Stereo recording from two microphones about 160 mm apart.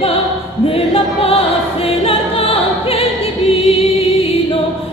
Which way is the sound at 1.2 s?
35° left (ahead or behind).